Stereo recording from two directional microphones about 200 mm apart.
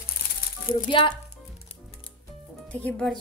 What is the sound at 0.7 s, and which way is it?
Speech, 25° left (ahead or behind).